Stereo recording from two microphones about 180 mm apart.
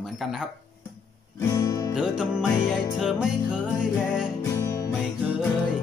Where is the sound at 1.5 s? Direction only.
20° left (ahead or behind).